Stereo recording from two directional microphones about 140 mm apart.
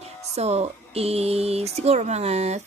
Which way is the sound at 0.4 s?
50° right (ahead or behind).